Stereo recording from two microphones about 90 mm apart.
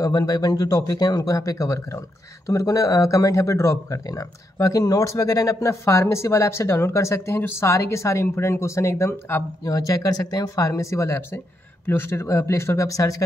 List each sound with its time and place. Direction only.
0.0 s speech: 45° left (ahead or behind); by 9.4 s 30° left (ahead or behind)
9.7 s speech: 40° left (ahead or behind)